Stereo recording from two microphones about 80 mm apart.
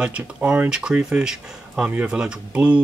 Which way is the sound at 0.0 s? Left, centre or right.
Centre.